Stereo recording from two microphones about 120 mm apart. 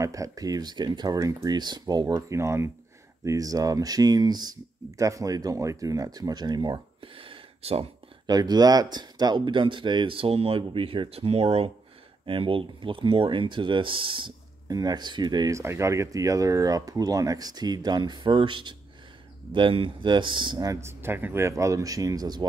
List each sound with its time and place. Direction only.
0.0 s speech: 25° right (ahead or behind); by 7.9 s 55° right (ahead or behind)
8.3 s speech: 35° right (ahead or behind)
14.7 s speech: 35° right (ahead or behind)
15.5 s speech: 25° right (ahead or behind)